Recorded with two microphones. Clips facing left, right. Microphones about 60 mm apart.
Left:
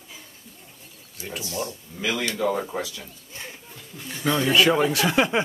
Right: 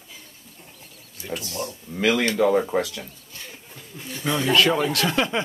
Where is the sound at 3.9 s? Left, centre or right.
Centre.